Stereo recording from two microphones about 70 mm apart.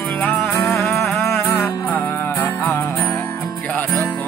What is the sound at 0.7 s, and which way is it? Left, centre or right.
Music, left.